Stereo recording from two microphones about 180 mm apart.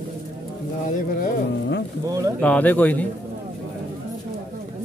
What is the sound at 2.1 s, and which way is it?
Speech, 20° right (ahead or behind).